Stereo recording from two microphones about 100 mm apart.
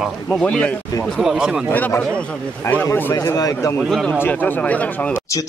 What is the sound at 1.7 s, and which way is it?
A man's voice, 15° left (ahead or behind).